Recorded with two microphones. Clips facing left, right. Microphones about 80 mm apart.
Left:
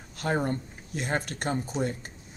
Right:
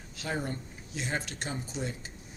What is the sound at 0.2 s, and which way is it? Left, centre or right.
Speech, left.